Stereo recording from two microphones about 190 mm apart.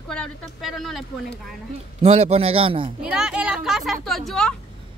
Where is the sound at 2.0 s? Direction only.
35° right (ahead or behind).